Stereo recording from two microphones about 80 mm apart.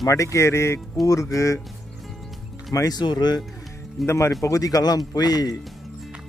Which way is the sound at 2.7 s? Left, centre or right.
Left.